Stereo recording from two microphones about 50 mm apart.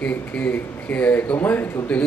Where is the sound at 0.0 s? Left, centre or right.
Left.